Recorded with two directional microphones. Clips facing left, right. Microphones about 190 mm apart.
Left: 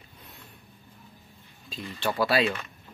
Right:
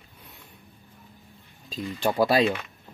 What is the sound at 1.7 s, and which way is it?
Speech, 45° right (ahead or behind).